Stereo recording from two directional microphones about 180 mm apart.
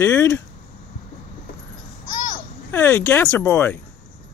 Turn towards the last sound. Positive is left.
turn(degrees=10)  # may be behind; listen again after turning